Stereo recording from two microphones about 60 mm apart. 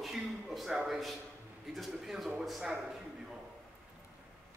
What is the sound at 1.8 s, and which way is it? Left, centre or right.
A man's voice, centre.